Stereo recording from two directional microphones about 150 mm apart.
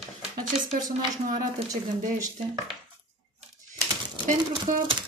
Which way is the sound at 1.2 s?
55° right (ahead or behind).